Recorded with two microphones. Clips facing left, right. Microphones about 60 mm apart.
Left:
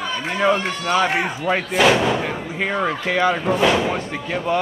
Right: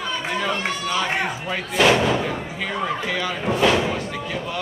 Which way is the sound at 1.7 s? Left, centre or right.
Centre.